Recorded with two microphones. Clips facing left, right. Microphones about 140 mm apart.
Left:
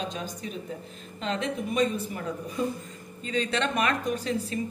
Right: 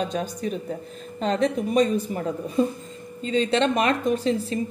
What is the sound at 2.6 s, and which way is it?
A woman's voice, 30° right (ahead or behind).